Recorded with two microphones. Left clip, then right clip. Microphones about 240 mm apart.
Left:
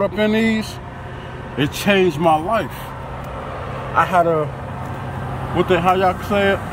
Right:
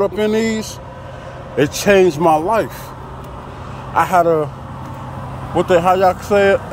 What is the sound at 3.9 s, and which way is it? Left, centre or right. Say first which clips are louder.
Speech: right 2 dB; centre.